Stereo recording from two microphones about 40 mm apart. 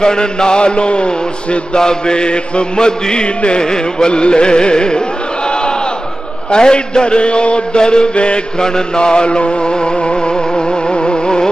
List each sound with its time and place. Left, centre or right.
0.0 s mantra: centre
5.5 s crowd: left
6.5 s a sound: left